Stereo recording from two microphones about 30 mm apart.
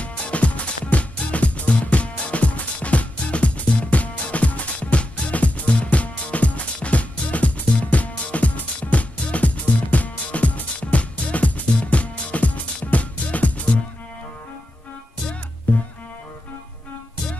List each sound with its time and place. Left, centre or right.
0.0 s music: left
15.7 s music: left